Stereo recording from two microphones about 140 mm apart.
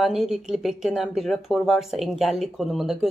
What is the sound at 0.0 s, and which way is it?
Speech, 5° right (ahead or behind).